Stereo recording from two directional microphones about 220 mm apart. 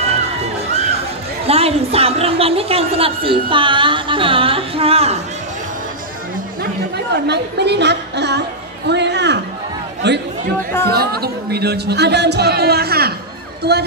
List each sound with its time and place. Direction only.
1.5 s a woman's voice: 25° right (ahead or behind)
7.2 s speech: 50° right (ahead or behind)
8.8 s a sound: 50° right (ahead or behind)
10.0 s speech: 50° right (ahead or behind)